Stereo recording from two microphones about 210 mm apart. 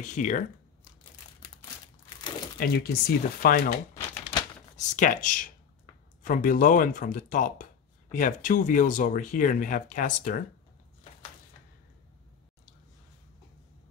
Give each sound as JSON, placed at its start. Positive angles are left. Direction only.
{"t": 0.0, "sound": "speech", "side_deg": 35}
{"t": 2.6, "sound": "speech", "side_deg": 50}
{"t": 4.2, "sound": "typewriter", "side_deg": 25}
{"t": 4.9, "sound": "speech", "side_deg": 40}